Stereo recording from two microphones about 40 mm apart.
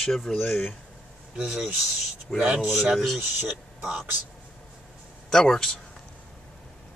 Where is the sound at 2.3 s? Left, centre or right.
Centre.